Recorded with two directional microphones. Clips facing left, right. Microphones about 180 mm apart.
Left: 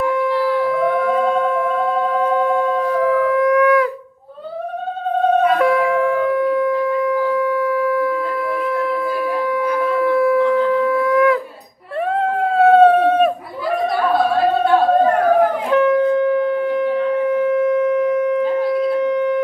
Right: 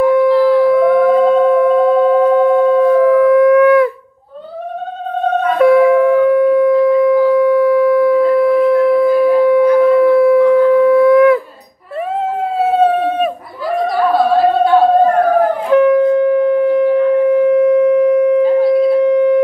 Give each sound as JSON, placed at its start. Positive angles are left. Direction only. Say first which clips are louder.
{"t": 0.1, "sound": "howl", "louder": "right 8 dB", "side_deg": -35}
{"t": 5.6, "sound": "music", "louder": "right 7 dB", "side_deg": -35}
{"t": 12.5, "sound": "emergency vehicle", "louder": "left 3 dB", "side_deg": 0}
{"t": 15.7, "sound": "wind instrument", "louder": "right 6 dB", "side_deg": -30}